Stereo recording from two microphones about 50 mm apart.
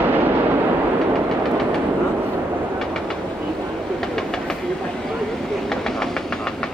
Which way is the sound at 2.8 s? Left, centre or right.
Centre.